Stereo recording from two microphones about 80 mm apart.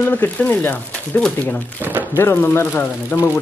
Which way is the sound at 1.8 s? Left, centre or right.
Right.